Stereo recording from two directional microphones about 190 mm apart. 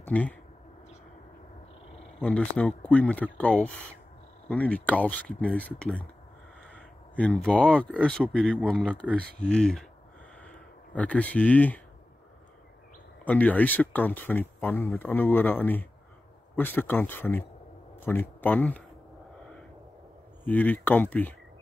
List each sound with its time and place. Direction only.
0.0 s speech: 10° left (ahead or behind)
2.1 s speech: 5° left (ahead or behind)
6.7 s a sound: 5° left (ahead or behind)
7.8 s speech: 5° left (ahead or behind)
9.2 s speech: 5° left (ahead or behind)
13.2 s speech: 10° left (ahead or behind)
20.4 s speech: 10° left (ahead or behind)